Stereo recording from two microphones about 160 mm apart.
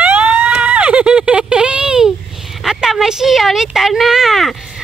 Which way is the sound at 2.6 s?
Centre (ahead or behind).